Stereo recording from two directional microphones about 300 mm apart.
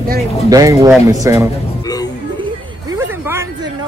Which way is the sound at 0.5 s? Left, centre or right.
Centre.